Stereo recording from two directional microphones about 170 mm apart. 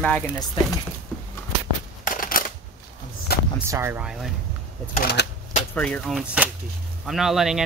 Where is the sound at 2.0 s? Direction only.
50° left (ahead or behind).